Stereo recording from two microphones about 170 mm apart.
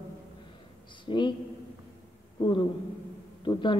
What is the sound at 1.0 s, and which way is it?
Speech, 30° left (ahead or behind).